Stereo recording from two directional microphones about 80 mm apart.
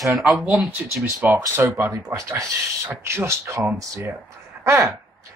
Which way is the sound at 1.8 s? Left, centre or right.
Right.